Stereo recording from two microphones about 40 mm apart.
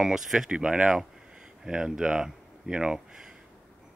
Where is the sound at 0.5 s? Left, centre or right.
Right.